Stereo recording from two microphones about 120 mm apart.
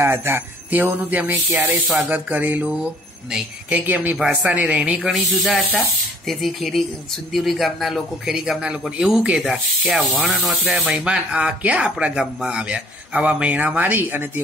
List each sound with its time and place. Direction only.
0.0 s speech: 20° right (ahead or behind)
1.5 s a man's voice: centre (ahead or behind)
2.0 s a man's voice: 15° right (ahead or behind)